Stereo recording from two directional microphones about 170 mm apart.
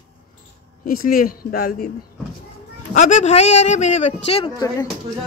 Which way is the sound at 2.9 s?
45° left (ahead or behind).